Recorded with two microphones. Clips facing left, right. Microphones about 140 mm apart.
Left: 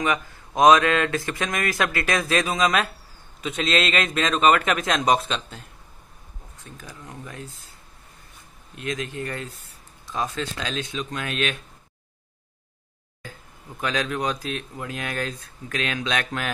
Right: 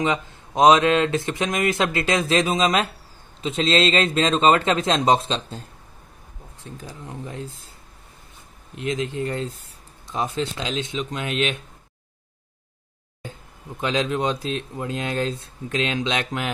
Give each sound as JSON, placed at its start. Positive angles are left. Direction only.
{"t": 0.0, "sound": "speech", "side_deg": -25}
{"t": 8.7, "sound": "speech", "side_deg": -20}
{"t": 13.2, "sound": "speech", "side_deg": -25}